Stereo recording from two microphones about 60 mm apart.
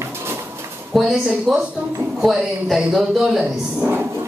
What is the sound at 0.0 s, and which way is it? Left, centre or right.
Dog, right.